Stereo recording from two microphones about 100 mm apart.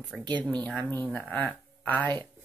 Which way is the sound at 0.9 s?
20° left (ahead or behind).